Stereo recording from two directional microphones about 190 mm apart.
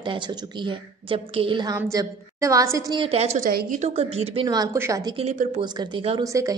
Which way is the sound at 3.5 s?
55° right (ahead or behind).